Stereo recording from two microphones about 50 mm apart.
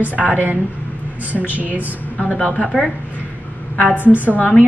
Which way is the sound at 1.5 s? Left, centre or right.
Right.